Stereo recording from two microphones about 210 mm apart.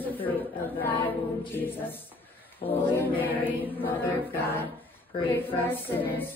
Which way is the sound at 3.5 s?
10° left (ahead or behind).